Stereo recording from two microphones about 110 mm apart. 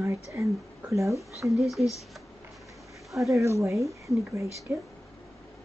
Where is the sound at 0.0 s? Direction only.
25° right (ahead or behind).